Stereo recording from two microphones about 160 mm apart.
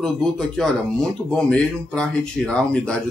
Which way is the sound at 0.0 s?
5° left (ahead or behind).